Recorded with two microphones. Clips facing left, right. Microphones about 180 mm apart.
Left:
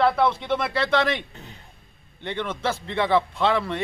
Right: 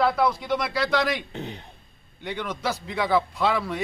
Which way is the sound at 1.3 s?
70° right (ahead or behind).